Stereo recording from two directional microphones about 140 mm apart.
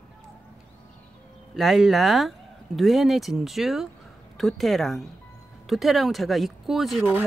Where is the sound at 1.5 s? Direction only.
Centre (ahead or behind).